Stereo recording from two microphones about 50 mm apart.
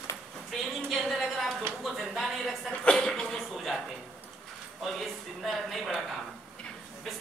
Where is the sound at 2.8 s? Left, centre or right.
Centre.